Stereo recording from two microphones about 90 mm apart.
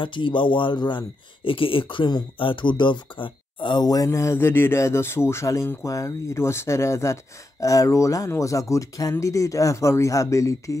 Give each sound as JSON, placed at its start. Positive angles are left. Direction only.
{"t": 0.0, "sound": "speech", "side_deg": 65}